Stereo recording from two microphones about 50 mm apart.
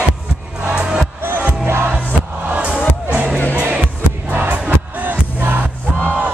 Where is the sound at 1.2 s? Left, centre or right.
Right.